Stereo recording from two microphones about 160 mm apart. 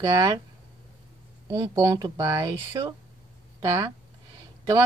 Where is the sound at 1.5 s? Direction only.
20° right (ahead or behind).